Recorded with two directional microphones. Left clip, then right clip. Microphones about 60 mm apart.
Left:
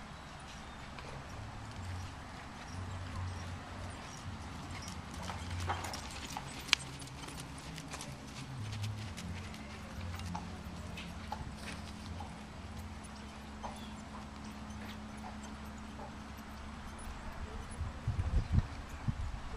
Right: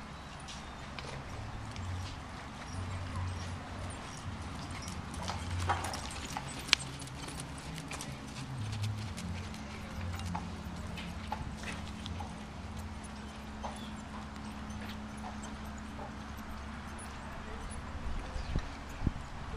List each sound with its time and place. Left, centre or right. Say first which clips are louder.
5.7 s clip-clop: right 5 dB; right
6.7 s clip-clop: right 2 dB; centre